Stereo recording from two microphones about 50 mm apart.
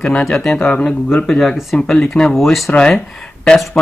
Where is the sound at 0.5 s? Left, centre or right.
Centre.